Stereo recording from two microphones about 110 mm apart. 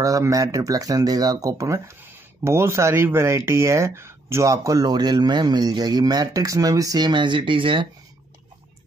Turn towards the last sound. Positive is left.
turn(degrees=-50)  # may be behind; listen again after turning